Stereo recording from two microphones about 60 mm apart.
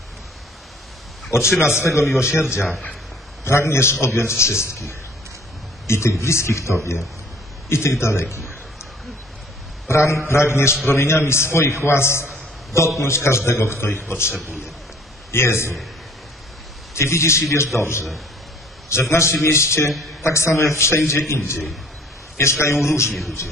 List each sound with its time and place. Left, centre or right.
1.3 s a man's voice: left
8.0 s a man's voice: left
9.8 s a man's voice: left
16.9 s a man's voice: left
19.9 s a man's voice: centre
20.2 s a man's voice: left
22.4 s a man's voice: left